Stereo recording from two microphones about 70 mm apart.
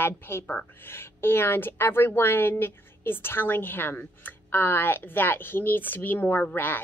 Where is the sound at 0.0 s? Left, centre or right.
Left.